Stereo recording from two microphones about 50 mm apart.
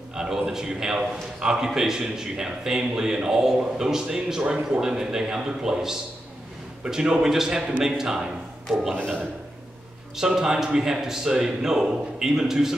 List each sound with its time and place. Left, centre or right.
0.1 s a man's voice: centre
10.1 s a man's voice: centre